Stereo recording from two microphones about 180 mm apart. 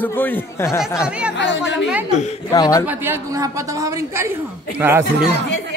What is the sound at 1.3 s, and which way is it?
Speech, 90° left.